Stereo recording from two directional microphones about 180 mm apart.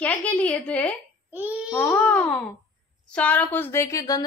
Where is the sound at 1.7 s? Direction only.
10° left (ahead or behind).